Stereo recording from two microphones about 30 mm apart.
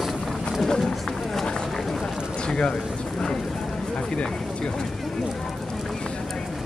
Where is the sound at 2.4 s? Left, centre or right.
Left.